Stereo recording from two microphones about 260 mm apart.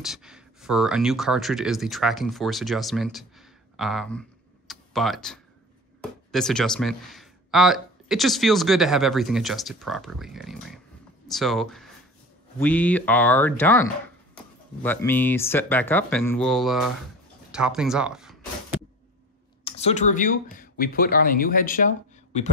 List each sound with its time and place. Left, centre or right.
0.0 s speech: centre
19.6 s speech: left